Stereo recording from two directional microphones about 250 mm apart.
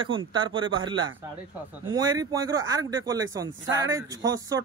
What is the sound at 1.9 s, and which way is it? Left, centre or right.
Speech, centre.